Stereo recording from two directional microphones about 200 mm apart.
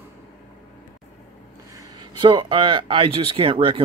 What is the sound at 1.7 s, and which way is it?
Speech, 20° right (ahead or behind).